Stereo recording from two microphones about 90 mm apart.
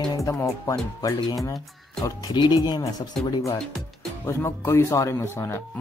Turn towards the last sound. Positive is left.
turn(degrees=30)  # may be behind; listen again after turning